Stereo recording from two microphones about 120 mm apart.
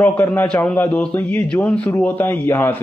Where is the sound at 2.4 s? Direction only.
20° left (ahead or behind).